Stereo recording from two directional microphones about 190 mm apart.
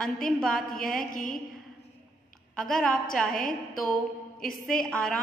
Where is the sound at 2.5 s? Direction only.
Centre (ahead or behind).